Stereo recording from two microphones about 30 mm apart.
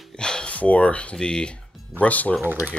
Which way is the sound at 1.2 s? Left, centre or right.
Left.